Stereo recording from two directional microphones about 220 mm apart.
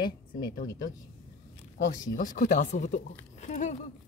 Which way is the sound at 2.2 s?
35° left (ahead or behind).